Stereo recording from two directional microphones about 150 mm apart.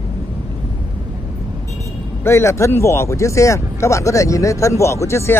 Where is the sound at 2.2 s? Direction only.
20° left (ahead or behind).